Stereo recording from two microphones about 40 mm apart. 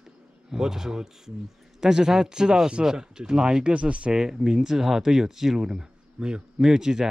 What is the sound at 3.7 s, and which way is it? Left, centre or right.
Speech, right.